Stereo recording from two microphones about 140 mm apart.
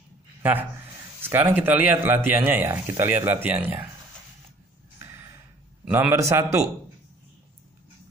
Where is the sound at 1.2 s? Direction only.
15° right (ahead or behind).